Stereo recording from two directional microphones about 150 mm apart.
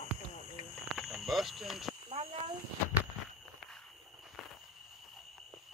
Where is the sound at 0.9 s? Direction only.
Centre (ahead or behind).